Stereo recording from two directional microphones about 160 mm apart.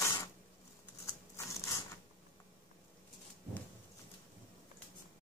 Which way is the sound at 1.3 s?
20° left (ahead or behind).